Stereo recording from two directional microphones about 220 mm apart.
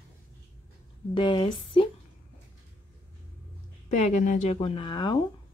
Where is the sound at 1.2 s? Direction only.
20° left (ahead or behind).